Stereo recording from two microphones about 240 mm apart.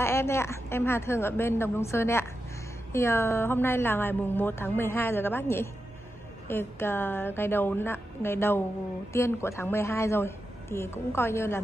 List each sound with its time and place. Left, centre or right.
0.0 s a woman's voice: centre